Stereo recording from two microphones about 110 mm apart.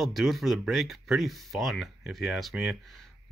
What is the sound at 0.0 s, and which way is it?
Speech, centre (ahead or behind).